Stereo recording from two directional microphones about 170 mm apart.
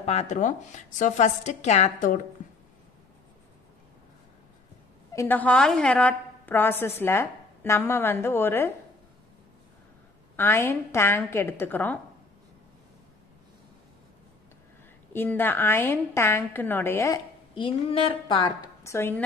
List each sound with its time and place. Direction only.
0.0 s speech: 40° left (ahead or behind)
5.1 s a woman's voice: 15° left (ahead or behind)
10.3 s a woman's voice: 15° left (ahead or behind)
15.1 s a woman's voice: 10° left (ahead or behind)
17.6 s speech: 30° left (ahead or behind)
18.9 s a woman's voice: 15° left (ahead or behind)